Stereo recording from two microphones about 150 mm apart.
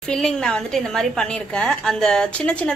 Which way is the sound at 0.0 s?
5° left (ahead or behind).